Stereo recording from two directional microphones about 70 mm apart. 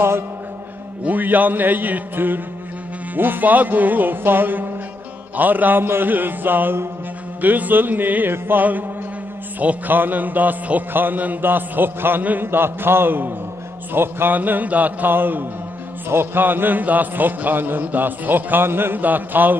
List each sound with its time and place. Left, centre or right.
1.0 s music: right